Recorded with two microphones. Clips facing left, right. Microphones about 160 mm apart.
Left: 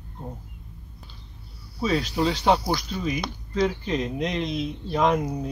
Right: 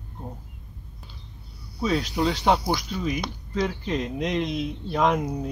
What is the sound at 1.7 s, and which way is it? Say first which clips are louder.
Speech: even; centre (ahead or behind).